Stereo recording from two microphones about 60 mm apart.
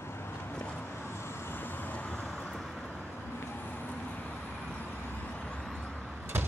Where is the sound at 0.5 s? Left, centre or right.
Centre.